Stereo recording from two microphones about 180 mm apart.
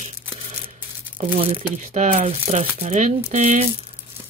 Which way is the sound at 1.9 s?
40° right (ahead or behind).